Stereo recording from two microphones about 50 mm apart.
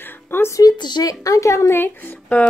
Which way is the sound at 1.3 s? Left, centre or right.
Left.